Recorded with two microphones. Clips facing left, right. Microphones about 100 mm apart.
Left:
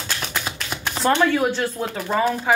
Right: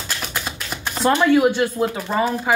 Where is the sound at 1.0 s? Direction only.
10° right (ahead or behind).